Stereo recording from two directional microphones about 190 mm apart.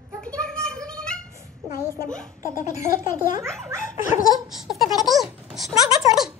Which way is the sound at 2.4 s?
45° left (ahead or behind).